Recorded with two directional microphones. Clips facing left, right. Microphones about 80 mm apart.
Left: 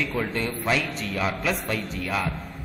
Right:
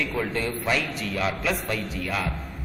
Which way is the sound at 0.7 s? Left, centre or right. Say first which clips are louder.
Left 1 dB; centre.